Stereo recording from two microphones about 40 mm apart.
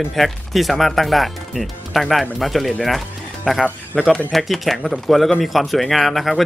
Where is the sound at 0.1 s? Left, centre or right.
Centre.